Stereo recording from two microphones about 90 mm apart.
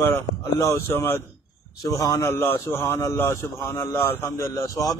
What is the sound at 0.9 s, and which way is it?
Speech, 25° left (ahead or behind).